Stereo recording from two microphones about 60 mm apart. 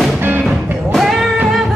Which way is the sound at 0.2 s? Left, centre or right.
Right.